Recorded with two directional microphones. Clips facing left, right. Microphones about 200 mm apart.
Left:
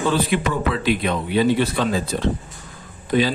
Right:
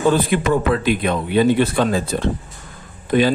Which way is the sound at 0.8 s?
50° right (ahead or behind).